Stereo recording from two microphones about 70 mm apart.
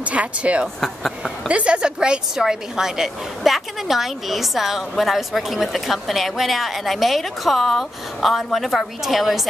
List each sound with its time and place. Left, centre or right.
0.0 s speech: centre
0.7 s a woman's voice: centre
1.5 s a woman's voice: centre